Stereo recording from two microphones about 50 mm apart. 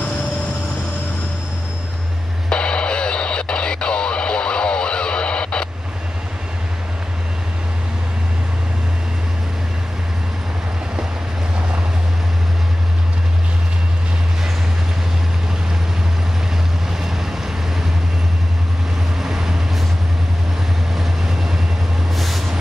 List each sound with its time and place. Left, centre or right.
2.5 s radio: centre
19.1 s vehicle: centre
20.9 s vehicle: centre